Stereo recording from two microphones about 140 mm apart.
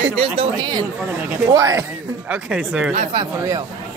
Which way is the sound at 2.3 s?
5° right (ahead or behind).